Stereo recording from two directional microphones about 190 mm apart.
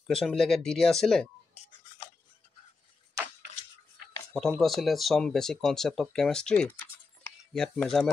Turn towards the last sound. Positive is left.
turn(degrees=5)  # may be behind; listen again after turning